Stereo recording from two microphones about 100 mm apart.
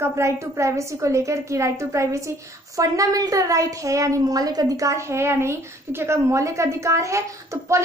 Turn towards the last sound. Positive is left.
turn(degrees=-30)  # may be behind; listen again after turning